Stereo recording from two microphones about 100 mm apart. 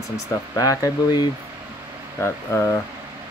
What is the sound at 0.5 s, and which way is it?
Speech, 35° left (ahead or behind).